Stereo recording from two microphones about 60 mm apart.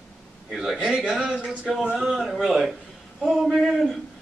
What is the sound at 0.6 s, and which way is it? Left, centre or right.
A man's voice, centre.